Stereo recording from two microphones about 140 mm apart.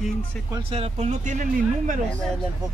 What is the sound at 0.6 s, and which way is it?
Speech, 45° right (ahead or behind).